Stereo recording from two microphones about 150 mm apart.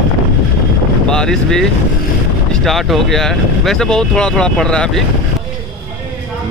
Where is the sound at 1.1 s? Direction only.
5° left (ahead or behind).